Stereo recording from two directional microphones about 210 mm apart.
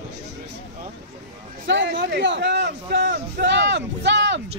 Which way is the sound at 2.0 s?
55° right (ahead or behind).